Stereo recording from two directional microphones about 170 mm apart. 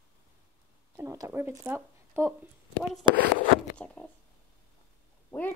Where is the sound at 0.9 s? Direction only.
20° right (ahead or behind).